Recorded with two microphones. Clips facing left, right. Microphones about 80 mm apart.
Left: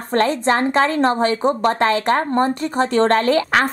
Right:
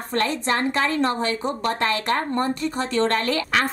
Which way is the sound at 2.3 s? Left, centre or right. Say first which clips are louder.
Left 5 dB; left.